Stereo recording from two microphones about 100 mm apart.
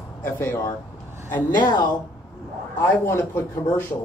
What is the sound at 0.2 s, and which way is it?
Speech, 20° left (ahead or behind).